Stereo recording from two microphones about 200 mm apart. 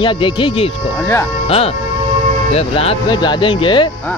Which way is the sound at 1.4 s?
30° left (ahead or behind).